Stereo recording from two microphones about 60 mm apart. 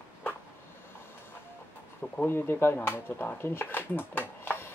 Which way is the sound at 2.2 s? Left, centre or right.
Left.